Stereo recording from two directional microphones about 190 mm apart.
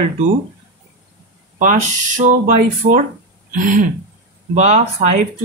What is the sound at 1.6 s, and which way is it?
Speech, 40° right (ahead or behind).